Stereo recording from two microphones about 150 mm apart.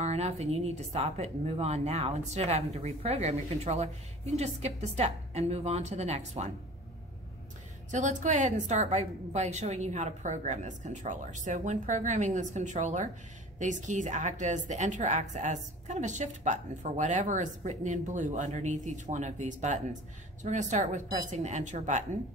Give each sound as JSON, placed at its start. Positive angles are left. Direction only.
{"t": 0.0, "sound": "a woman's voice", "side_deg": -45}
{"t": 7.9, "sound": "a woman's voice", "side_deg": -55}